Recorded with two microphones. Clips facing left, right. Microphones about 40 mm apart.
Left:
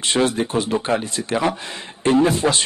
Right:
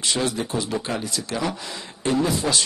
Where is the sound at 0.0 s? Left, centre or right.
Left.